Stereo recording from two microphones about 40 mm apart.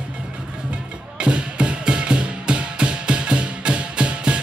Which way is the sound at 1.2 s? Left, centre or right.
Right.